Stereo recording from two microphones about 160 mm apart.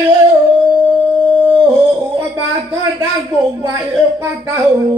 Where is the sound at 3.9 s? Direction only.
15° right (ahead or behind).